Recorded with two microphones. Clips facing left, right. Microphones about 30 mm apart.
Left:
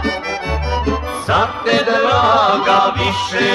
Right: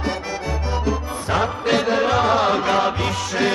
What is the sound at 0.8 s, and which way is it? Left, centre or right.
Music, left.